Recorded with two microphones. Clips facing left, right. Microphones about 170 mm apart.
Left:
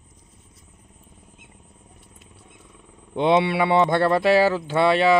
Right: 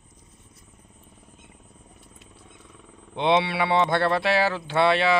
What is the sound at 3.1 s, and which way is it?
A man's voice, 45° left (ahead or behind).